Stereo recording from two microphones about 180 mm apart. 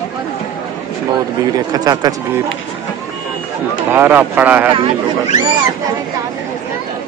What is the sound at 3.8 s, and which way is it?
Speech, 10° right (ahead or behind).